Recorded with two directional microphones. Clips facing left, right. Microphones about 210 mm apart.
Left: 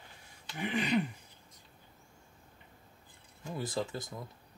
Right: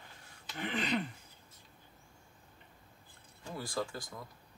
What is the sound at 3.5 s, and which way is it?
Speech, 20° left (ahead or behind).